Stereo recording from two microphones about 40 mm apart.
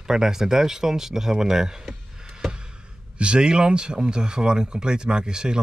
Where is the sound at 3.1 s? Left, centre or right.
Right.